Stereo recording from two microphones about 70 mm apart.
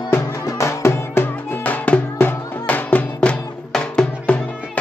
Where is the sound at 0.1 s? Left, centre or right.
Left.